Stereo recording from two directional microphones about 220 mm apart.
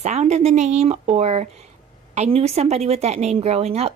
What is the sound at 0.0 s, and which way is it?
A woman's voice, 30° right (ahead or behind).